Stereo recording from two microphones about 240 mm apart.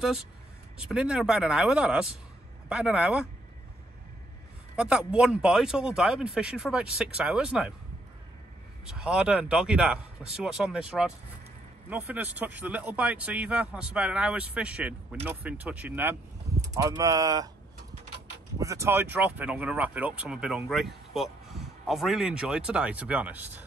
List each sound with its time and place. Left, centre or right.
0.0 s speech: centre
4.7 s speech: centre
8.8 s speech: centre
18.6 s speech: centre